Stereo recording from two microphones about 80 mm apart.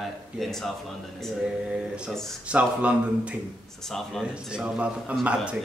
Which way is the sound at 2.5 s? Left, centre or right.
Centre.